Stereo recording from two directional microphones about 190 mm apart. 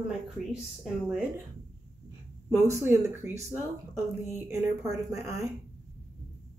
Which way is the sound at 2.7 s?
15° right (ahead or behind).